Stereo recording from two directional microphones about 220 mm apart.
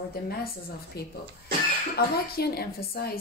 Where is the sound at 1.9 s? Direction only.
45° left (ahead or behind).